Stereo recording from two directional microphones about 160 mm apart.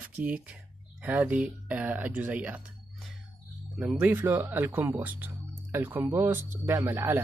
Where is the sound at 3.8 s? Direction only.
10° right (ahead or behind).